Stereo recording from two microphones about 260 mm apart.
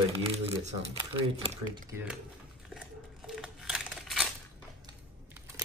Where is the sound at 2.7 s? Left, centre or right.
Centre.